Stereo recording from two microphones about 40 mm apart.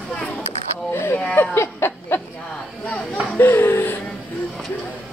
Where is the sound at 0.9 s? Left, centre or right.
Left.